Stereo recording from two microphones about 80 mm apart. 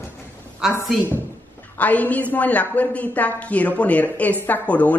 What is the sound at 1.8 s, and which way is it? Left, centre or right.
A woman's voice, centre.